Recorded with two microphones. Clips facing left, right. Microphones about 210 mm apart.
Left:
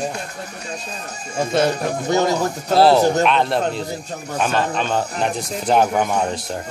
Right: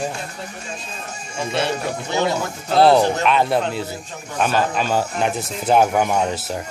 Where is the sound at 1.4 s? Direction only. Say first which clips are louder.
Left 4 dB; 45° left (ahead or behind).